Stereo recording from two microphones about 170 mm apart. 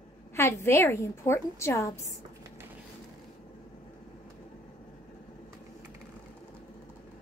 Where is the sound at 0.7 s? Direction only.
15° left (ahead or behind).